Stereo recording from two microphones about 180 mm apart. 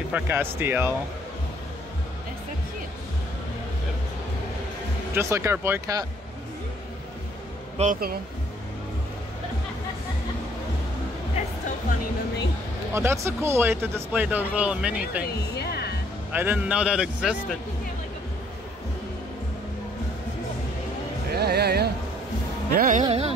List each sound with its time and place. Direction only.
0.1 s speech: 10° right (ahead or behind)
5.1 s speech: 15° right (ahead or behind)
7.7 s speech: 40° right (ahead or behind)
12.9 s speech: 15° right (ahead or behind)
15.5 s speech: 65° left (ahead or behind)
16.3 s speech: 10° right (ahead or behind)
21.3 s speech: 60° right (ahead or behind)
22.8 s speech: 45° right (ahead or behind)